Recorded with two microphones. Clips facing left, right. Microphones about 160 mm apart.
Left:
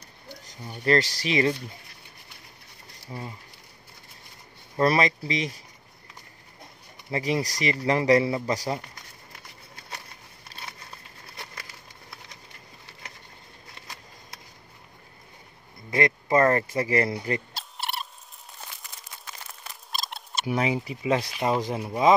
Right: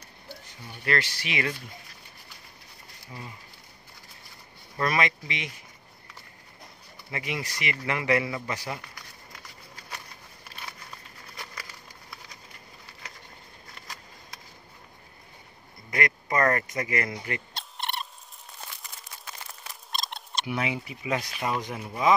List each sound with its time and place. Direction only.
0.5 s a man's voice: 40° left (ahead or behind)
3.1 s speech: 30° left (ahead or behind)
4.7 s a man's voice: 35° left (ahead or behind)
7.1 s a man's voice: 35° left (ahead or behind)
15.9 s a man's voice: 25° left (ahead or behind)
17.6 s frog: 5° left (ahead or behind)
19.7 s rodents: centre (ahead or behind)
20.4 s speech: 35° left (ahead or behind)